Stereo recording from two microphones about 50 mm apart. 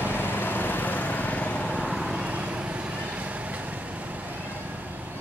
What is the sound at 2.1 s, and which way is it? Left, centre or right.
Vehicle, right.